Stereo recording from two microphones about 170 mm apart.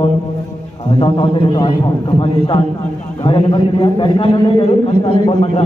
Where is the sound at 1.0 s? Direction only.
30° left (ahead or behind).